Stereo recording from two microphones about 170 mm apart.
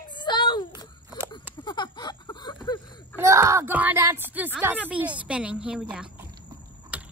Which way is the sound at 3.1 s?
20° right (ahead or behind).